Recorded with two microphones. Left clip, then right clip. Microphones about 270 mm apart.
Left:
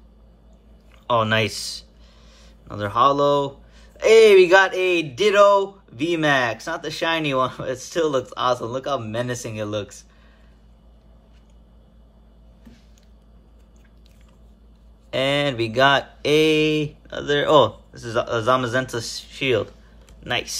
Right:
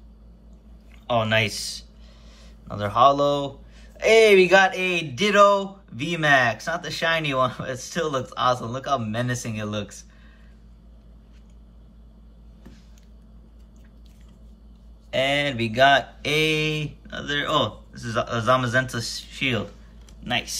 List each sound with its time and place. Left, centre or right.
1.0 s speech: centre
15.0 s speech: centre